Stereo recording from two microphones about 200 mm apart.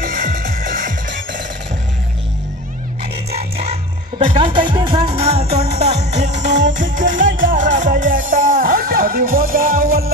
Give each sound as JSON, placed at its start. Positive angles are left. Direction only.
{"t": 0.0, "sound": "music", "side_deg": -45}
{"t": 3.3, "sound": "music", "side_deg": -30}
{"t": 4.3, "sound": "speech", "side_deg": -25}
{"t": 7.3, "sound": "music", "side_deg": -40}